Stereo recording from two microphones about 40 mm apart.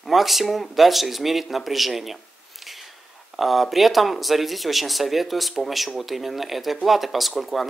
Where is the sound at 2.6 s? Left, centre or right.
Centre.